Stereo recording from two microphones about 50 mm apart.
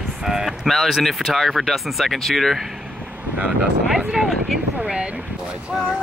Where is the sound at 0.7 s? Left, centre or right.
Centre.